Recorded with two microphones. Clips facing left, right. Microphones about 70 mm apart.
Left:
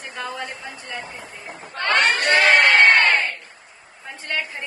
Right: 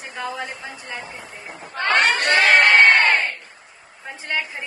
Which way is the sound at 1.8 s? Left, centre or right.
Right.